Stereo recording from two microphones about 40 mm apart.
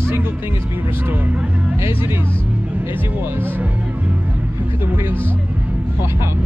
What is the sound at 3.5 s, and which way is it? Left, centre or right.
Music, right.